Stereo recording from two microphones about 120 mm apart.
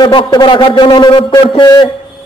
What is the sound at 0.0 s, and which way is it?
A man's voice, 40° left (ahead or behind).